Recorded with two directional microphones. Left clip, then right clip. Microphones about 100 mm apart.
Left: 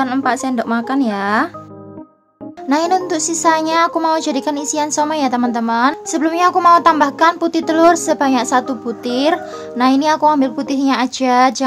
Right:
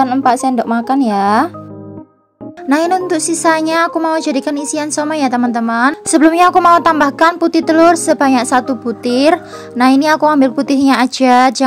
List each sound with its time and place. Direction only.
0.2 s a woman's voice: 25° right (ahead or behind)
2.7 s a woman's voice: 35° right (ahead or behind)
3.9 s a woman's voice: 20° right (ahead or behind)
6.0 s a woman's voice: 65° right (ahead or behind)
6.5 s a woman's voice: 45° right (ahead or behind)